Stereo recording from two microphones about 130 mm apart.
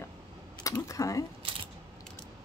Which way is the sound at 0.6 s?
25° left (ahead or behind).